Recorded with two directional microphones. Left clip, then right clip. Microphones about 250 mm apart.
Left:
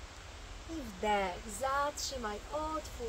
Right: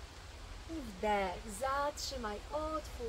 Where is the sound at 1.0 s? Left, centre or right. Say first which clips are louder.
Left 2 dB; centre.